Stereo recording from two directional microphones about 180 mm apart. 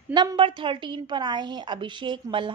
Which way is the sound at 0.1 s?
25° right (ahead or behind).